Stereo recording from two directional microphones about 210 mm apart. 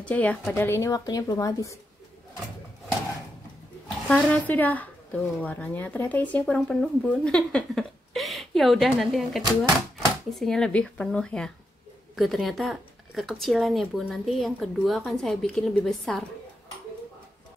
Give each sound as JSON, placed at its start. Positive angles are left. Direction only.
{"t": 0.0, "sound": "speech", "side_deg": 5}
{"t": 4.1, "sound": "speech", "side_deg": 5}